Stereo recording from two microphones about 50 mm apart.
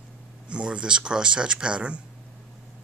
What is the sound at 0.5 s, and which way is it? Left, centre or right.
Speech, right.